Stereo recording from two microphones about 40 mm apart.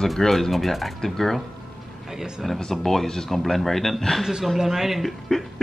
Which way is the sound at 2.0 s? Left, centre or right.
Centre.